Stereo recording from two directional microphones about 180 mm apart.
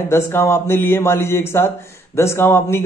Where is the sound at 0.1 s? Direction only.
15° left (ahead or behind).